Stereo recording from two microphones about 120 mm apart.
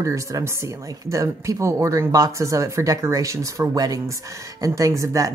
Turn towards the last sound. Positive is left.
turn(degrees=-25)  # may be behind; listen again after turning